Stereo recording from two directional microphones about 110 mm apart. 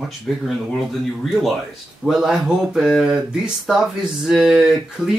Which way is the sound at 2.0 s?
5° right (ahead or behind).